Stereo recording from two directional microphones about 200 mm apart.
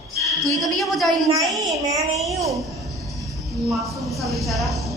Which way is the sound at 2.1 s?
Centre (ahead or behind).